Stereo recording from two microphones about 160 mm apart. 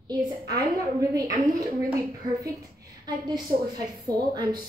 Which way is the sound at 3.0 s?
25° right (ahead or behind).